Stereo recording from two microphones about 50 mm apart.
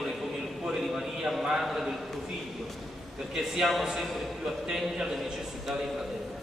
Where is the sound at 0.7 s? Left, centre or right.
Centre.